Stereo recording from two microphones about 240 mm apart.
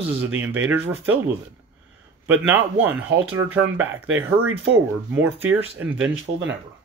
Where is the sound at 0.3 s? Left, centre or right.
Centre.